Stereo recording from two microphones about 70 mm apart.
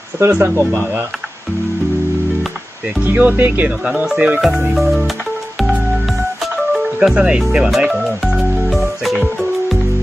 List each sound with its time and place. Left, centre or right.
0.2 s speech: right
3.0 s speech: right
3.9 s speech: centre
4.4 s speech: centre
6.8 s speech: centre
8.4 s music: centre